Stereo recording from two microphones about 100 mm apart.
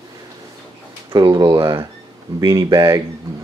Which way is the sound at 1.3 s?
45° right (ahead or behind).